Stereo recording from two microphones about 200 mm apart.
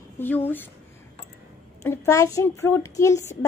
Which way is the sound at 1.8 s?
15° left (ahead or behind).